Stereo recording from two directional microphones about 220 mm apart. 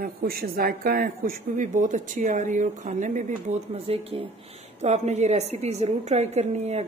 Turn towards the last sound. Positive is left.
turn(degrees=-30)  # may be behind; listen again after turning